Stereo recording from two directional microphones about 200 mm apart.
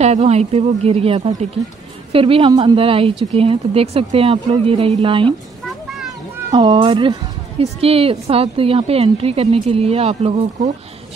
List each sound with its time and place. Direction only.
0.0 s a woman's voice: 35° right (ahead or behind)
5.9 s children playing: centre (ahead or behind)
6.5 s a woman's voice: 25° right (ahead or behind)